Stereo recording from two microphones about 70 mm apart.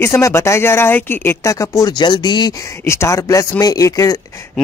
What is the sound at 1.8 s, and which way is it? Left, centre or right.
Speech, left.